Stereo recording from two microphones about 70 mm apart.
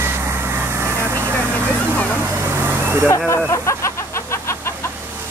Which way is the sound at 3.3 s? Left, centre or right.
Left.